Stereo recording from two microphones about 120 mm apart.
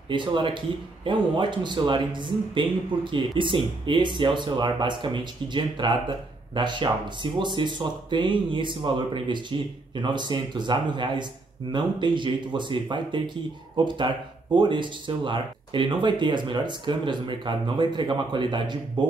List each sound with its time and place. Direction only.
0.1 s speech: 40° right (ahead or behind)